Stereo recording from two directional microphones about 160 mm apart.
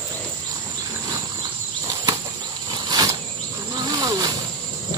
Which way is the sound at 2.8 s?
25° right (ahead or behind).